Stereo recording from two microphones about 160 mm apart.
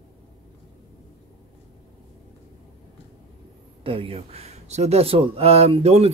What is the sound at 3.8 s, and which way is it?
Speech, 35° right (ahead or behind).